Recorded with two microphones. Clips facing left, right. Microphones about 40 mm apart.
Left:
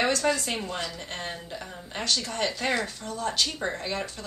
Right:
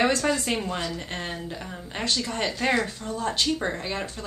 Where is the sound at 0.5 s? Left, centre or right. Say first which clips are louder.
Right 4 dB; centre.